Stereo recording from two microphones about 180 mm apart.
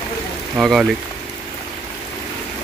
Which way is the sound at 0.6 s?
5° right (ahead or behind).